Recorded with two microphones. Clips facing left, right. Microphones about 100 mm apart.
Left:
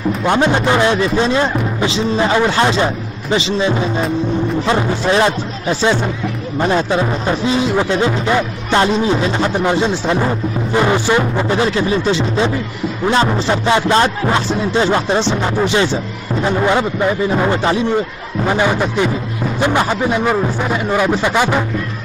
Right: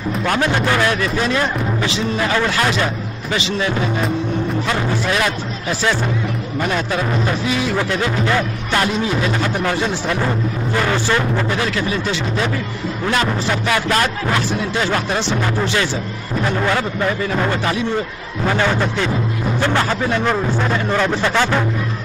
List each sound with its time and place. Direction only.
0.2 s speech: 20° left (ahead or behind)